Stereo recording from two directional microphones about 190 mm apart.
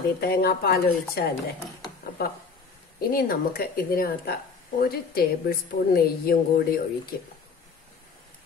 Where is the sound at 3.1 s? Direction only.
55° left (ahead or behind).